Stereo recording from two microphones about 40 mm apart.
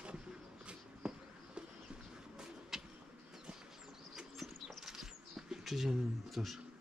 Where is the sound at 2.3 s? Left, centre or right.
Centre.